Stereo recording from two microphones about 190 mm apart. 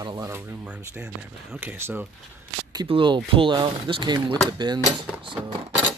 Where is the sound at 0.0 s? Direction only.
20° right (ahead or behind).